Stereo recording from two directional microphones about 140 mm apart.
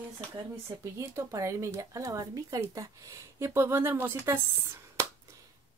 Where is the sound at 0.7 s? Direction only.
20° right (ahead or behind).